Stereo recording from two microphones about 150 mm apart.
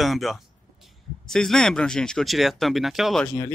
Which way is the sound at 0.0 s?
Centre (ahead or behind).